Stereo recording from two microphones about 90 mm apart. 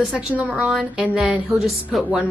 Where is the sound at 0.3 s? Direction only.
15° right (ahead or behind).